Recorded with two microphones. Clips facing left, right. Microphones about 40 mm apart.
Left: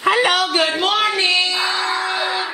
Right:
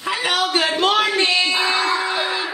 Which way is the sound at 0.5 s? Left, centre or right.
Centre.